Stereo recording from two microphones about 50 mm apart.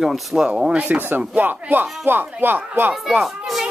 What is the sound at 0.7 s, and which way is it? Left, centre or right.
Speech, right.